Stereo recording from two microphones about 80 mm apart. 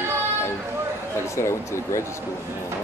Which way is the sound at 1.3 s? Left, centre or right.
Left.